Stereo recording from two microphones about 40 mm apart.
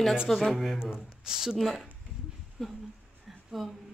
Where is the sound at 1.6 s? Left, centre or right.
Centre.